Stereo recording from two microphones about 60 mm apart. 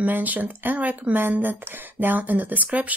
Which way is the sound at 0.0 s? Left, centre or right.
Right.